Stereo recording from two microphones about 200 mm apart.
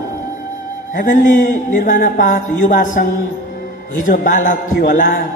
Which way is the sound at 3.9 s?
40° left (ahead or behind).